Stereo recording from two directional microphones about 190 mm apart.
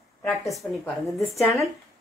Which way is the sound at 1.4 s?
15° left (ahead or behind).